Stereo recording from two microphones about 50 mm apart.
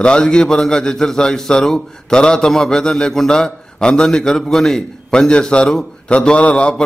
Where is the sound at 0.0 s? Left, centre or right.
Centre.